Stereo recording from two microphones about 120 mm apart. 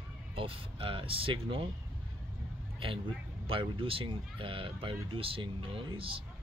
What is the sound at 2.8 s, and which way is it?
Speech, 50° right (ahead or behind).